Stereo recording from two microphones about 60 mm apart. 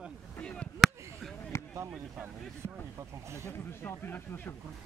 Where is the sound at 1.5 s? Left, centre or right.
Left.